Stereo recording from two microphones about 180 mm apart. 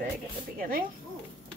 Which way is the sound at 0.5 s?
50° right (ahead or behind).